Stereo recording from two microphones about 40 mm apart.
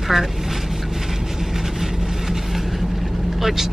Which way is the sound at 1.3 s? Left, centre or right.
Centre.